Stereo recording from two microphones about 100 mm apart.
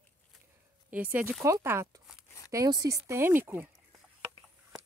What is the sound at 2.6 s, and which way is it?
Speech, 40° right (ahead or behind).